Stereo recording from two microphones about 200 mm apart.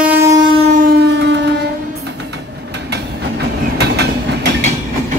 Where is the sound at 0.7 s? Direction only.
45° right (ahead or behind).